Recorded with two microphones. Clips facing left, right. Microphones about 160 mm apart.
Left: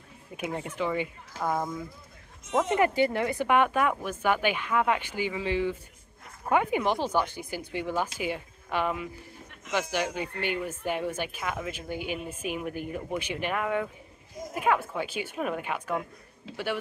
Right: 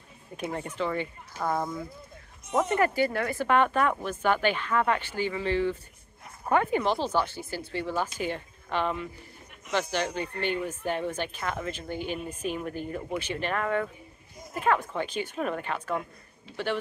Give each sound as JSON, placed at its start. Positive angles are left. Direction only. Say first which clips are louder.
{"t": 0.4, "sound": "speech", "louder": "even", "side_deg": 10}
{"t": 1.3, "sound": "speech", "louder": "even", "side_deg": 90}
{"t": 2.8, "sound": "speech", "louder": "left 1 dB", "side_deg": 20}